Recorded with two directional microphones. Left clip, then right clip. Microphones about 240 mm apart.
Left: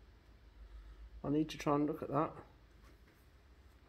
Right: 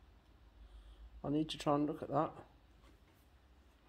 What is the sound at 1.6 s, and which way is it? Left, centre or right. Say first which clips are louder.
Speech: right 1 dB; centre.